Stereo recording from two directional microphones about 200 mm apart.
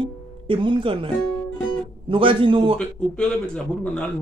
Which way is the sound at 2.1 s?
25° right (ahead or behind).